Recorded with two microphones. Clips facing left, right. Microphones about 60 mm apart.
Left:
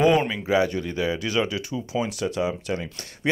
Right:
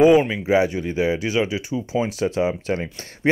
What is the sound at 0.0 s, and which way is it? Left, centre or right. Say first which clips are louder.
Speech: right 5 dB; centre.